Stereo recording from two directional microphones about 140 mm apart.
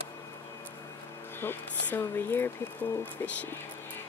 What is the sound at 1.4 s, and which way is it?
Speech, 15° left (ahead or behind).